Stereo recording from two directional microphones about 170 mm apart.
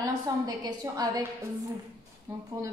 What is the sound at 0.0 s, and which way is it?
A woman's voice, 20° right (ahead or behind).